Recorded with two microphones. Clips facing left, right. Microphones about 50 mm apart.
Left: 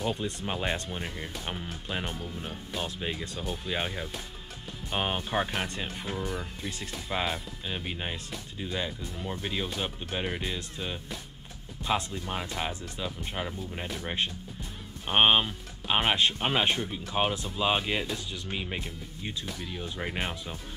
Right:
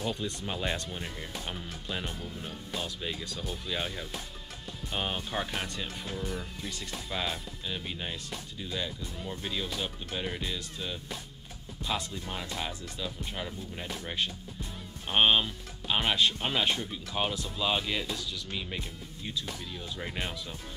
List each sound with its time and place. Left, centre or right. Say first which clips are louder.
0.0 s speech: left 2 dB; left